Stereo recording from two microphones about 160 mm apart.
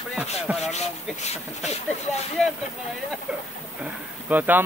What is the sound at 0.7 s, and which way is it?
Speech, 45° left (ahead or behind).